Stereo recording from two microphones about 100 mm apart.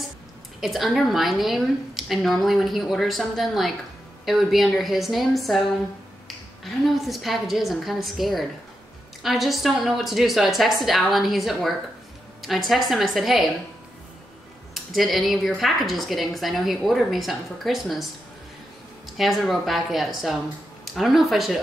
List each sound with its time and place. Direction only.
0.6 s a woman's voice: centre (ahead or behind)
15.0 s a woman's voice: centre (ahead or behind)
19.0 s a woman's voice: centre (ahead or behind)